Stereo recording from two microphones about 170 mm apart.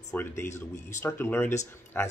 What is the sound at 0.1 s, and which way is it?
Speech, 15° left (ahead or behind).